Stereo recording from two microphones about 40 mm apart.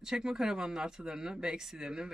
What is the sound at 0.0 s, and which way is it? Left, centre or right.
Speech, centre.